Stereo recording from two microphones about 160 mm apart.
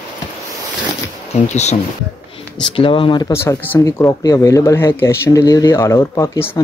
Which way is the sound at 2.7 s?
35° left (ahead or behind).